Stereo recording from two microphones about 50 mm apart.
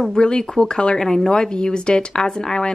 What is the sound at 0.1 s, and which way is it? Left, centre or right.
Speech, centre.